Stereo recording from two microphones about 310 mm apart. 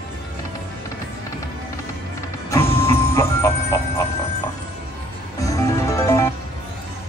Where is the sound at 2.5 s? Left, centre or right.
Centre.